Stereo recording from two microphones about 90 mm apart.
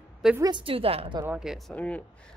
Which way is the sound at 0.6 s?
90° right.